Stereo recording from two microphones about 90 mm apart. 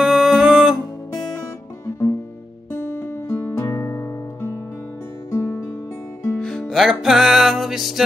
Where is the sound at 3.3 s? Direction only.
20° left (ahead or behind).